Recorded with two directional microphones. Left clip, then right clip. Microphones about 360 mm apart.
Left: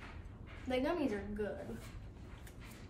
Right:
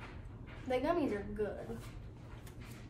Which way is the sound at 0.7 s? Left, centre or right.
Centre.